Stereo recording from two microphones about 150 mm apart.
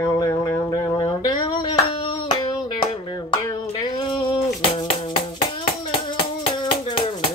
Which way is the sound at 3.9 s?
30° left (ahead or behind).